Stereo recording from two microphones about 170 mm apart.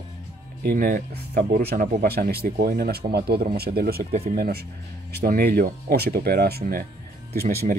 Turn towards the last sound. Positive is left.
turn(degrees=-65)  # may be behind; listen again after turning